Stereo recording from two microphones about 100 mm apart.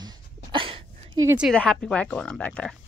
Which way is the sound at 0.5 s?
60° right (ahead or behind).